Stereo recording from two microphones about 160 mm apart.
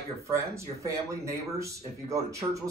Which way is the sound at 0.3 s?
20° right (ahead or behind).